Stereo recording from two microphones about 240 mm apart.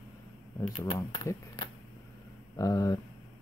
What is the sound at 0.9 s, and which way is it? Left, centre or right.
Speech, centre.